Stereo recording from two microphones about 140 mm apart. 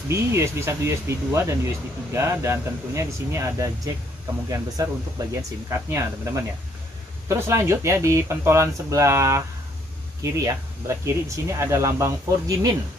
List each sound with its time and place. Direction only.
0.1 s speech: 20° right (ahead or behind)